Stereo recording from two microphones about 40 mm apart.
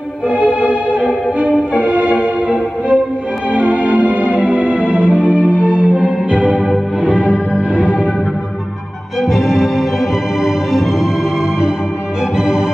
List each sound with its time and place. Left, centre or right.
0.3 s music: right
7.0 s music: left
7.5 s music: right
9.2 s music: centre
12.4 s music: centre